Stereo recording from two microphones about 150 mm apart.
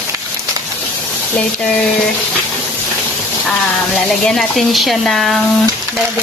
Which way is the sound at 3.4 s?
5° left (ahead or behind).